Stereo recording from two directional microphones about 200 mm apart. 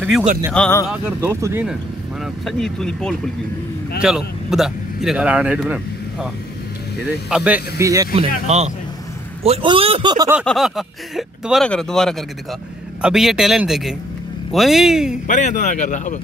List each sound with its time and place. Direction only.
0.5 s speech: 5° left (ahead or behind)
0.8 s speech: 5° right (ahead or behind)
2.4 s a man's voice: 5° left (ahead or behind)
7.8 s speech: 15° right (ahead or behind)
8.5 s a man's voice: 35° right (ahead or behind)
10.4 s speech: centre (ahead or behind)
15.2 s speech: 40° left (ahead or behind)